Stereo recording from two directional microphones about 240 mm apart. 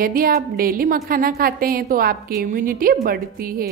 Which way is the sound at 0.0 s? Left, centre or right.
Right.